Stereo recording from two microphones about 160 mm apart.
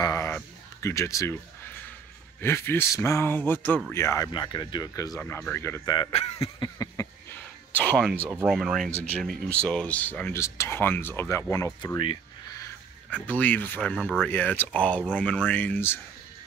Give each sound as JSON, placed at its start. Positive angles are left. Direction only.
{"t": 0.0, "sound": "a sound", "side_deg": 20}
{"t": 0.8, "sound": "speech", "side_deg": 20}
{"t": 2.4, "sound": "speech", "side_deg": 15}
{"t": 5.2, "sound": "speech", "side_deg": 10}
{"t": 5.9, "sound": "speech", "side_deg": 35}
{"t": 7.0, "sound": "a sound", "side_deg": 20}
{"t": 7.7, "sound": "speech", "side_deg": 10}
{"t": 8.5, "sound": "speech", "side_deg": 0}
{"t": 13.1, "sound": "speech", "side_deg": 10}